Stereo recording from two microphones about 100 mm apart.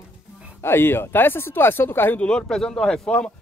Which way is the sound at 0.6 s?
20° left (ahead or behind).